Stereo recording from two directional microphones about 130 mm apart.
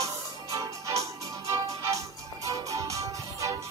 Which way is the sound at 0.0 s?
25° right (ahead or behind).